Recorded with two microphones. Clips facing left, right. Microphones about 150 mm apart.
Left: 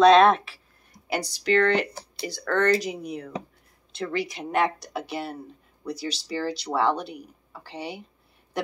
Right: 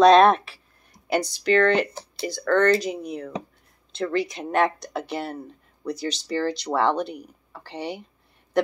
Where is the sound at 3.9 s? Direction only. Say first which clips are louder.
Right 4 dB; 10° left (ahead or behind).